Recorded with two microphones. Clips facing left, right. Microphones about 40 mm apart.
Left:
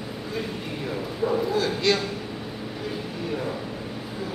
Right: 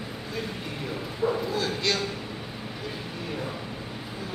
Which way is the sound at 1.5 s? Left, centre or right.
Centre.